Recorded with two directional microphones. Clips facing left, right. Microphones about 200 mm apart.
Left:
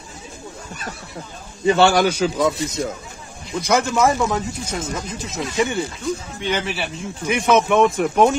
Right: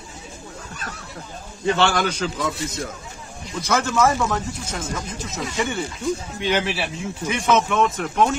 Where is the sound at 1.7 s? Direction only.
10° left (ahead or behind).